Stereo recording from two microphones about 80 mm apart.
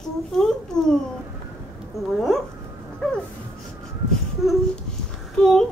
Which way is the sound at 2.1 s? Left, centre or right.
Centre.